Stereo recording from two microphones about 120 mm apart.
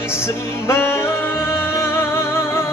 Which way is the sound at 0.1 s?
20° left (ahead or behind).